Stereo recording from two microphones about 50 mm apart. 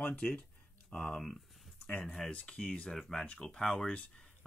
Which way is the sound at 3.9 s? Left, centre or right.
Left.